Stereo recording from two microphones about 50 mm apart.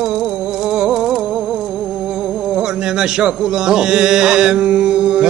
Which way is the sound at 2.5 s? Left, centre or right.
Centre.